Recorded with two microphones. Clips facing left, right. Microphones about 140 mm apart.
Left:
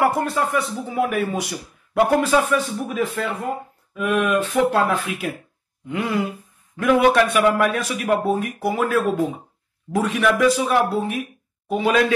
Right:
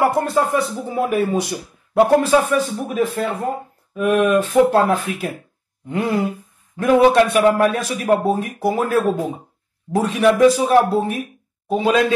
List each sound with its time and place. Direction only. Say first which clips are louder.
0.0 s speech: right 3 dB; 35° right (ahead or behind)
11.7 s a man's voice: right 2 dB; 30° right (ahead or behind)